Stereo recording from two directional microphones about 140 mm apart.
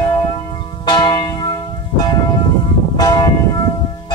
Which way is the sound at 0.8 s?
35° left (ahead or behind).